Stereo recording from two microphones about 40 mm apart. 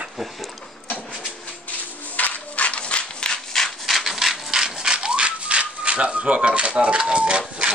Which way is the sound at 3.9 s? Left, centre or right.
Centre.